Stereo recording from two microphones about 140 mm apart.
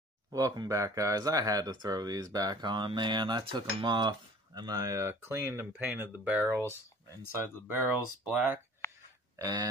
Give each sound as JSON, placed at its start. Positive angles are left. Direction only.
{"t": 0.3, "sound": "speech", "side_deg": -25}
{"t": 8.2, "sound": "speech", "side_deg": -10}
{"t": 8.8, "sound": "a sound", "side_deg": 20}
{"t": 9.4, "sound": "speech", "side_deg": -25}